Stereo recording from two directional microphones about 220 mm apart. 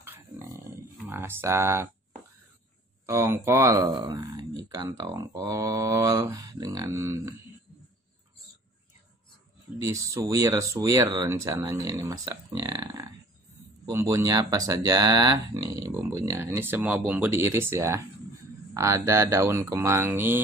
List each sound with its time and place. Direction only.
0.0 s a sound: 10° right (ahead or behind)
1.0 s speech: 10° right (ahead or behind)
3.1 s speech: 10° right (ahead or behind)
9.8 s speech: 15° right (ahead or behind)